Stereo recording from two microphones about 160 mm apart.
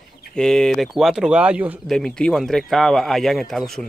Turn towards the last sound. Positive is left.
turn(degrees=0)  # may be behind; listen again after turning